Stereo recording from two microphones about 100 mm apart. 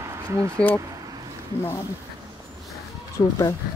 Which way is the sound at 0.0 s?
30° right (ahead or behind).